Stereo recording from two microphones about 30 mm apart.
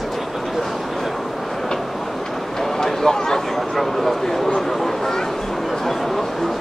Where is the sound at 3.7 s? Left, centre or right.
Centre.